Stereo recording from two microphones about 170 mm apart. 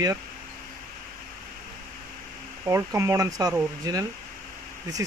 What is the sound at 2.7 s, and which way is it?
Speech, 15° right (ahead or behind).